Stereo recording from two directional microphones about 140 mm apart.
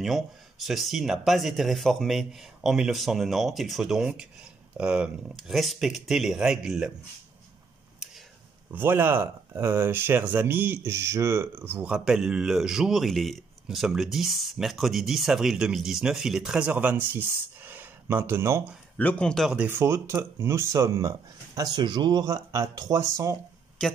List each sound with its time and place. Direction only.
0.0 s speech: centre (ahead or behind)
8.7 s speech: 15° right (ahead or behind)
18.9 s speech: 10° left (ahead or behind)
19.5 s speech: 15° right (ahead or behind)